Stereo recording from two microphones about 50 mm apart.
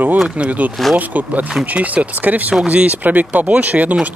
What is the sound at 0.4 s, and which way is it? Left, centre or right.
Speech, right.